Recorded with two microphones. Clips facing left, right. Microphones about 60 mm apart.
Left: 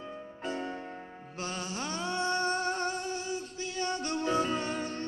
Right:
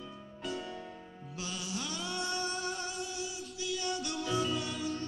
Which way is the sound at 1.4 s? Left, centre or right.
Left.